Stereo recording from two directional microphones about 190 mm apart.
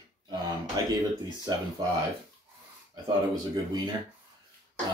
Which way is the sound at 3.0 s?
20° right (ahead or behind).